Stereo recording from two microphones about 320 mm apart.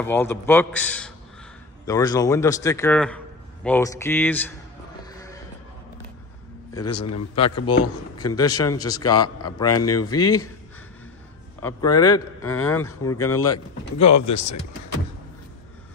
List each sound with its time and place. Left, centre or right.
0.0 s speech: centre
5.1 s a sound: centre
6.7 s a man's voice: centre
7.0 s a man's voice: left
8.2 s speech: centre
9.7 s a man's voice: left
11.6 s speech: centre
13.9 s speech: left